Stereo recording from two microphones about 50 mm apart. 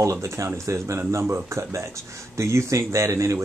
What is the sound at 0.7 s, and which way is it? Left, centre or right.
Speech, right.